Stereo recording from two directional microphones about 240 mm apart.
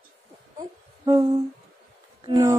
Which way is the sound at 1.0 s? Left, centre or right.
Centre.